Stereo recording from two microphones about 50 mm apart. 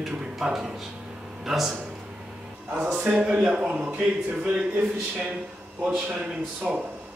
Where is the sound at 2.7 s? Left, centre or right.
Centre.